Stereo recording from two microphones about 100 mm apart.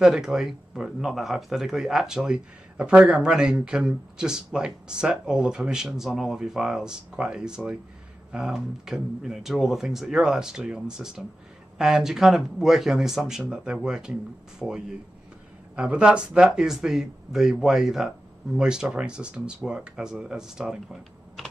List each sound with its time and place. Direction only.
0.0 s speech: 5° right (ahead or behind)
14.6 s speech: 5° left (ahead or behind)
15.7 s speech: 10° right (ahead or behind)